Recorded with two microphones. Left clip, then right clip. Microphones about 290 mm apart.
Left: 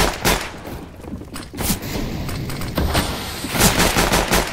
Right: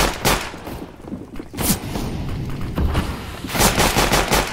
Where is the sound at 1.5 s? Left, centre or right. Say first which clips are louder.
Right 2 dB; centre.